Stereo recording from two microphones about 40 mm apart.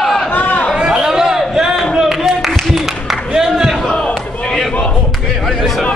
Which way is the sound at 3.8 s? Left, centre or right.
Left.